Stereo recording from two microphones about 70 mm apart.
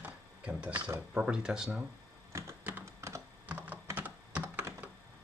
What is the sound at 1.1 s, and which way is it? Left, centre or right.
Speech, centre.